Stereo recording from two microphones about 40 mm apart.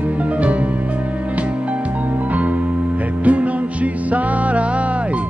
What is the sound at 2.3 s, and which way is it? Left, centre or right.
Music, right.